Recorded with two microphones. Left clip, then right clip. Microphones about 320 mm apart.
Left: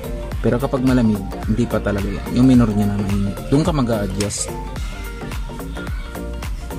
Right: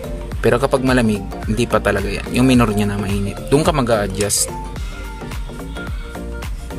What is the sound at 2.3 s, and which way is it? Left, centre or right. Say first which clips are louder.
Speech: right 1 dB; right.